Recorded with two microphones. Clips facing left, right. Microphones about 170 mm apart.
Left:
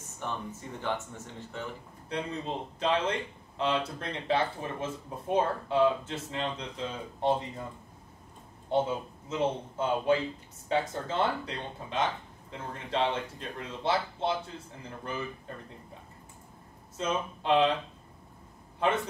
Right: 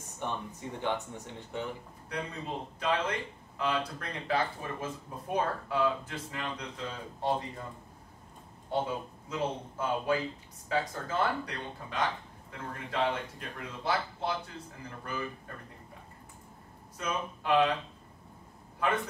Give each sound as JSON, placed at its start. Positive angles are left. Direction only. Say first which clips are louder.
{"t": 0.2, "sound": "speech", "louder": "even", "side_deg": -15}
{"t": 2.0, "sound": "speech", "louder": "left 3 dB", "side_deg": 25}
{"t": 8.6, "sound": "speech", "louder": "left 4 dB", "side_deg": 20}
{"t": 16.9, "sound": "speech", "louder": "left 3 dB", "side_deg": 25}